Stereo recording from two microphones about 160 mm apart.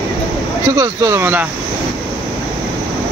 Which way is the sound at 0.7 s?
20° right (ahead or behind).